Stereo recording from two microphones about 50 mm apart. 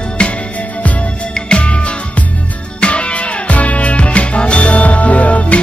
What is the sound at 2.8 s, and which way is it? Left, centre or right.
Music, left.